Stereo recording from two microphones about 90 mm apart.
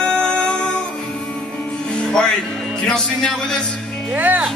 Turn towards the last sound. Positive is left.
turn(degrees=-20)  # may be behind; listen again after turning